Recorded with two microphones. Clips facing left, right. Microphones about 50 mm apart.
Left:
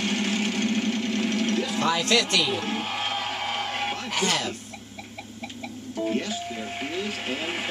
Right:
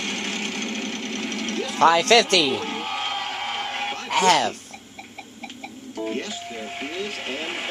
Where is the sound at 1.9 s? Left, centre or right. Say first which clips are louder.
Right 4 dB; right.